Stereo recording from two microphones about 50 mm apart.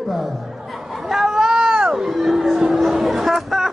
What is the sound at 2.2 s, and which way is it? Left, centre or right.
Music, centre.